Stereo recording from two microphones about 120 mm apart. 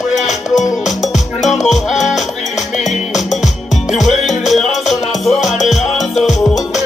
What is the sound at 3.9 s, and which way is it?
Music, centre (ahead or behind).